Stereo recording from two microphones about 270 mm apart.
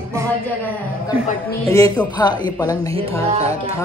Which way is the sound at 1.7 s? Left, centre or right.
Centre.